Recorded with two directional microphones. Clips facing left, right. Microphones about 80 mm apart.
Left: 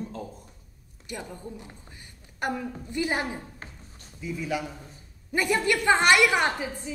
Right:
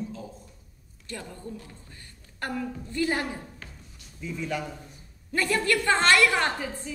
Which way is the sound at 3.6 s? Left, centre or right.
Left.